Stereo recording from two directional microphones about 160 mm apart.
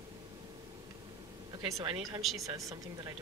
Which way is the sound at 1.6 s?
25° right (ahead or behind).